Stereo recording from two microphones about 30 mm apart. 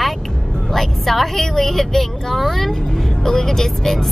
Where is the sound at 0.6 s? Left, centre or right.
Centre.